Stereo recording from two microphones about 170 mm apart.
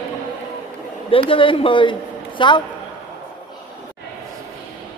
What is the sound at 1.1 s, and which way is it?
A woman's voice, 30° left (ahead or behind).